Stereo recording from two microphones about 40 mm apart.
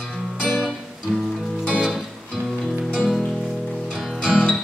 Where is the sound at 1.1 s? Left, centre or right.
Right.